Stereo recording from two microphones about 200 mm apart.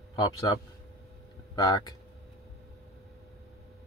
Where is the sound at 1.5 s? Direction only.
20° left (ahead or behind).